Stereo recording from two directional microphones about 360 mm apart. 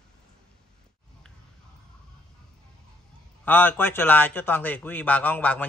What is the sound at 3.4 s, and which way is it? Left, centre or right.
A man's voice, centre.